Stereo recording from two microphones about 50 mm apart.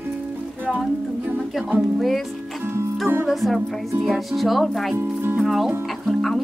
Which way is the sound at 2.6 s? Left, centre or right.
Right.